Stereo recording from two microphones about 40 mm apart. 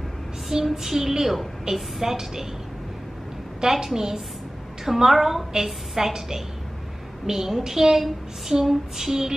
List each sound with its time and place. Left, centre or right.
0.5 s a woman's voice: centre
3.6 s a woman's voice: centre